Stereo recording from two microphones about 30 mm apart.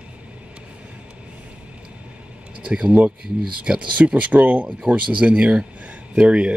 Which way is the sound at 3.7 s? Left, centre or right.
Right.